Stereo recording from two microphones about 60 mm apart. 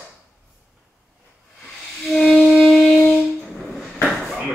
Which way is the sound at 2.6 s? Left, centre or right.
Centre.